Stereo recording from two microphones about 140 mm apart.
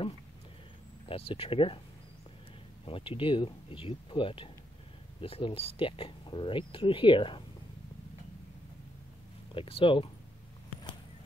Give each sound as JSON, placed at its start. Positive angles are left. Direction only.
{"t": 1.0, "sound": "speech", "side_deg": 40}
{"t": 2.8, "sound": "speech", "side_deg": 40}
{"t": 9.5, "sound": "speech", "side_deg": 40}